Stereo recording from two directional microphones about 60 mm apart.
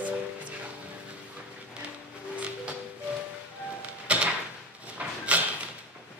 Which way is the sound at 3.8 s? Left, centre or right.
Right.